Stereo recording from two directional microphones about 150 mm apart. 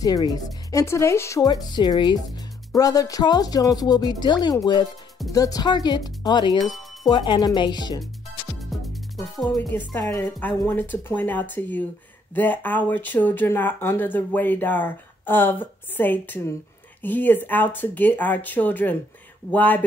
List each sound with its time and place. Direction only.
0.0 s speech: 25° left (ahead or behind)
6.6 s music: centre (ahead or behind)
7.1 s speech: 30° left (ahead or behind)
8.5 s music: centre (ahead or behind)
10.6 s speech: 10° left (ahead or behind)